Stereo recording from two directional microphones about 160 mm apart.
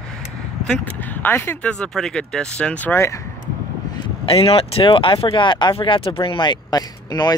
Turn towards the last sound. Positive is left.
turn(degrees=25)  # may be behind; listen again after turning